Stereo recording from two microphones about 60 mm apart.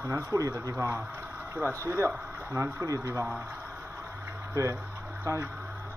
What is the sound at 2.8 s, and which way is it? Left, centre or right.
Speech, right.